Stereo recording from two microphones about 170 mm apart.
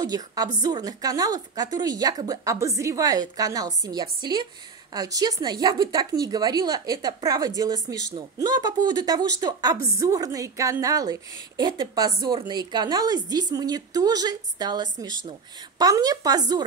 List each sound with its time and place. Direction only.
0.0 s a woman's voice: 25° right (ahead or behind)